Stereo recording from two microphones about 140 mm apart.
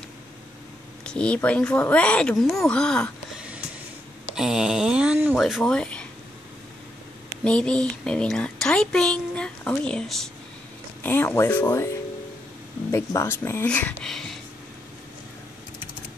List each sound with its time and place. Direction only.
1.0 s speech: 10° left (ahead or behind)
3.3 s a sound: 10° right (ahead or behind)
4.4 s speech: 5° right (ahead or behind)
5.4 s speech: 5° left (ahead or behind)
7.4 s speech: 10° left (ahead or behind)
11.0 s speech: 15° left (ahead or behind)
12.9 s speech: 20° left (ahead or behind); by 14.4 s 5° left (ahead or behind)